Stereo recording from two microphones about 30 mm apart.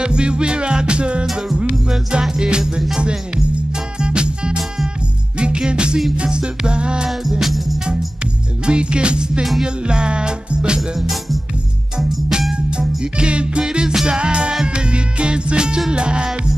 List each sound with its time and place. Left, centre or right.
0.0 s music: right
1.2 s music: centre
2.3 s music: right
4.0 s music: right
5.7 s music: right
7.1 s music: centre
8.6 s music: right
11.0 s music: centre
12.0 s music: right
12.7 s music: right
13.7 s music: right